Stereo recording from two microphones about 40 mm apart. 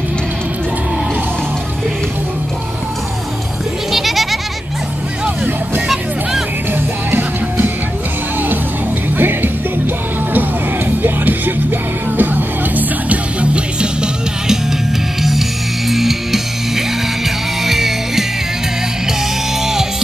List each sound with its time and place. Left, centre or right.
3.9 s goat: centre
6.7 s music: right
9.2 s music: right
11.0 s music: right
13.4 s music: right
15.9 s music: centre
19.6 s music: centre